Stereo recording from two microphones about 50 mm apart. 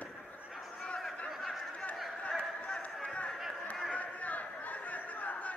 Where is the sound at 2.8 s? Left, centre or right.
Left.